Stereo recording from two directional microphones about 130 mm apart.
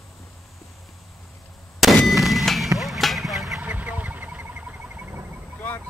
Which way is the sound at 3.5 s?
10° right (ahead or behind).